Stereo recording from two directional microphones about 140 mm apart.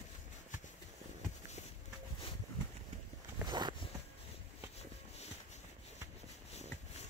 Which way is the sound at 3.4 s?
30° right (ahead or behind).